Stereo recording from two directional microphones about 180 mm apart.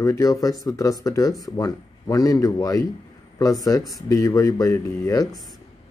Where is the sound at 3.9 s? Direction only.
15° left (ahead or behind).